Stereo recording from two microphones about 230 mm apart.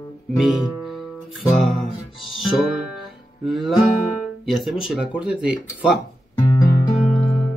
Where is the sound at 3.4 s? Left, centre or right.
Centre.